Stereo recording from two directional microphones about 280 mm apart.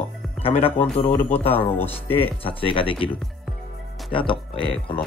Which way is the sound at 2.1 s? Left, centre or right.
Centre.